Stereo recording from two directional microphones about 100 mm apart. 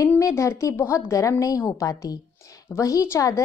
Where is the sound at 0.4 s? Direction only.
30° left (ahead or behind).